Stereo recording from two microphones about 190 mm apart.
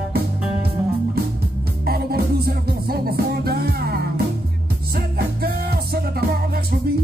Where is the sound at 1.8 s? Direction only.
55° right (ahead or behind).